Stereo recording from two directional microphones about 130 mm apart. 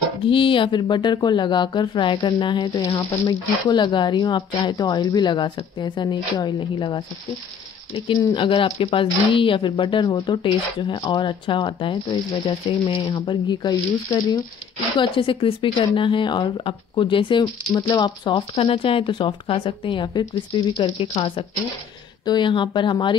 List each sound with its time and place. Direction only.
0.2 s speech: 40° left (ahead or behind)